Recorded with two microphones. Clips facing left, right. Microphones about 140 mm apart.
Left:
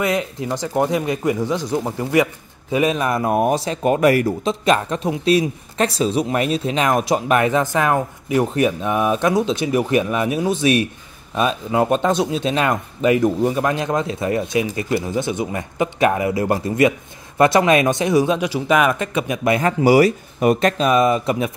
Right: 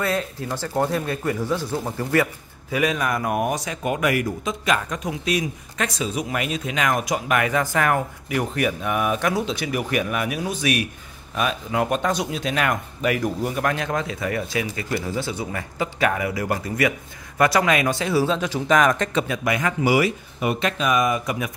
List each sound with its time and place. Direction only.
0.0 s speech: 15° left (ahead or behind)
19.5 s speech: 35° left (ahead or behind)